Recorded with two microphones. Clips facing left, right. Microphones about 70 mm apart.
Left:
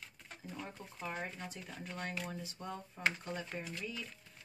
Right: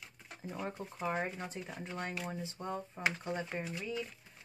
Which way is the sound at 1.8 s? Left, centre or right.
Right.